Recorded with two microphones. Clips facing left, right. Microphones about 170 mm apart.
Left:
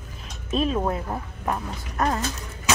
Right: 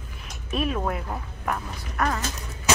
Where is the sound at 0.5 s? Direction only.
25° left (ahead or behind).